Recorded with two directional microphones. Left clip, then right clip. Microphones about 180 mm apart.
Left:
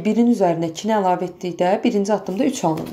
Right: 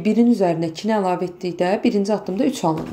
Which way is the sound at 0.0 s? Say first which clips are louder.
Even; 5° right (ahead or behind).